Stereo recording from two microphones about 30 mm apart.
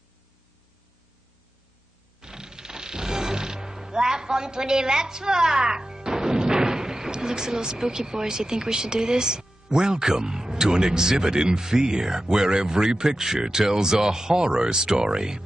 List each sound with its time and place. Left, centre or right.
2.2 s speech: right